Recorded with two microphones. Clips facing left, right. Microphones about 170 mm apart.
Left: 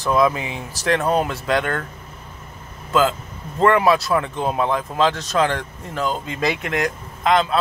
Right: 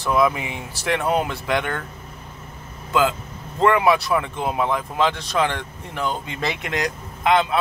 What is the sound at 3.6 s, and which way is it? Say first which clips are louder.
Speech: left 1 dB; 15° right (ahead or behind).